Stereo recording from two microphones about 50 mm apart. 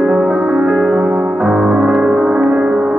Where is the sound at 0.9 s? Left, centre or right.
Right.